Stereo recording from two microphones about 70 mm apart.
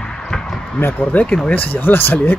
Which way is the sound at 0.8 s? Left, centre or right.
Left.